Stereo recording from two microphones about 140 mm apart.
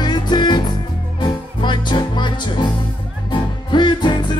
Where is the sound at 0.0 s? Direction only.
30° left (ahead or behind).